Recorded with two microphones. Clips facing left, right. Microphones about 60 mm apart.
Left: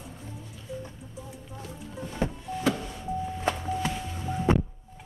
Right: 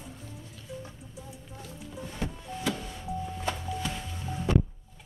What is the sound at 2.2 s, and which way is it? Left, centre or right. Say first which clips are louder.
Music: left 5 dB; left.